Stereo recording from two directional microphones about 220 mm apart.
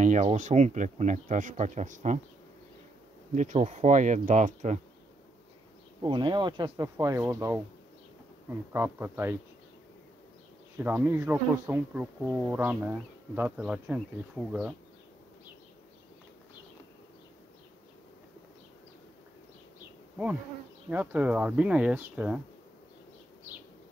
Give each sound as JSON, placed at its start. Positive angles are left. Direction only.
{"t": 0.0, "sound": "speech", "side_deg": -30}
{"t": 3.3, "sound": "speech", "side_deg": -35}
{"t": 6.0, "sound": "speech", "side_deg": -20}
{"t": 10.8, "sound": "speech", "side_deg": -10}
{"t": 20.9, "sound": "speech", "side_deg": -5}